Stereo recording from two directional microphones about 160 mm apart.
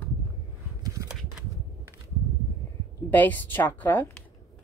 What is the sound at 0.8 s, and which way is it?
Shuffling cards, 20° right (ahead or behind).